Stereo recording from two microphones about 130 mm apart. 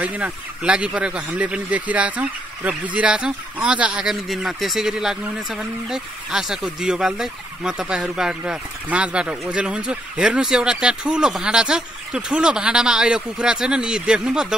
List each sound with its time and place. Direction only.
0.0 s speech: 10° right (ahead or behind)